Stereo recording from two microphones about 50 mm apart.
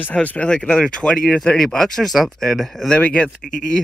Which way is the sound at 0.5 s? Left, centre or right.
Centre.